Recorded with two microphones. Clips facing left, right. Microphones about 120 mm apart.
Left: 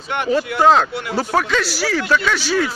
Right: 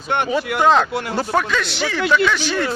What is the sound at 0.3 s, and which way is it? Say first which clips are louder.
Speech: left 3 dB; centre (ahead or behind).